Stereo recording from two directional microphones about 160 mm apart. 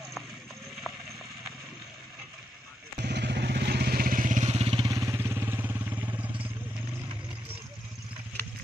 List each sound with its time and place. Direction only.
3.0 s vehicle: 90° right; by 4.8 s 40° right (ahead or behind)
4.8 s vehicle: 20° right (ahead or behind)